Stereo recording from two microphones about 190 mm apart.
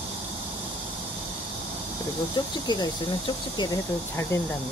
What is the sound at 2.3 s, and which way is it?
Speech, 20° left (ahead or behind).